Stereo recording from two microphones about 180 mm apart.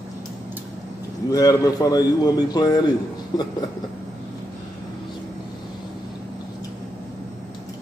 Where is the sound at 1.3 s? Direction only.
20° left (ahead or behind).